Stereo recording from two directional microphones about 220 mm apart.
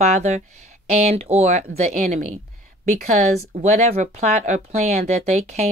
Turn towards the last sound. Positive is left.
turn(degrees=-30)  # may be behind; listen again after turning